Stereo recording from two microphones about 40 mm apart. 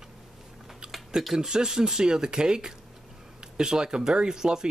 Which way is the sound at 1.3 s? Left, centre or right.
Centre.